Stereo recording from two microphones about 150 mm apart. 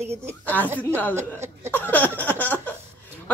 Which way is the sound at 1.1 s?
15° right (ahead or behind).